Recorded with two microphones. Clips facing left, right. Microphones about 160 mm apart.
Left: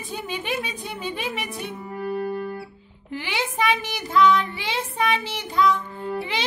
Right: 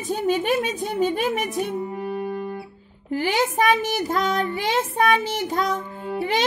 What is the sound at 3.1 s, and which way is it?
Child singing, 45° right (ahead or behind).